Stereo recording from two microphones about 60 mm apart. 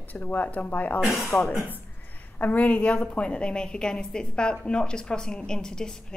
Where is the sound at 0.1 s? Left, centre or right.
Left.